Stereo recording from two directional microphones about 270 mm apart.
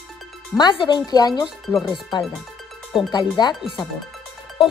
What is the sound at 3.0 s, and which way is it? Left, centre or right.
Speech, centre.